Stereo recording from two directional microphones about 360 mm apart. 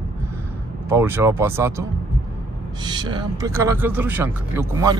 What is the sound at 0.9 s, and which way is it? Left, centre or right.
Speech, centre.